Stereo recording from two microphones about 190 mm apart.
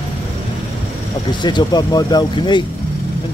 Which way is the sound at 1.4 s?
20° left (ahead or behind).